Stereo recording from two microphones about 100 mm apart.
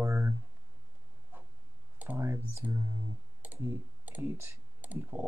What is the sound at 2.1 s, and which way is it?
Speech, 30° right (ahead or behind).